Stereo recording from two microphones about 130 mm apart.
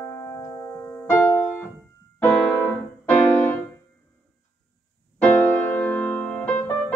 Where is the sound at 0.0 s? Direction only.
20° left (ahead or behind).